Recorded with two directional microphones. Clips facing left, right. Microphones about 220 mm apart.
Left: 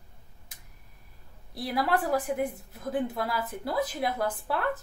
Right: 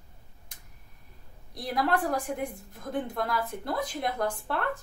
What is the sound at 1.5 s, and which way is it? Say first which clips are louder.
A woman's voice: even; 5° left (ahead or behind).